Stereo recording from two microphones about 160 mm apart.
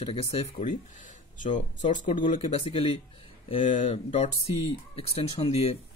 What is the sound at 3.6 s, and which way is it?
Speech, 50° left (ahead or behind).